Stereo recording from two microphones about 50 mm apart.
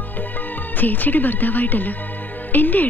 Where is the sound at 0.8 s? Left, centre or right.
Left.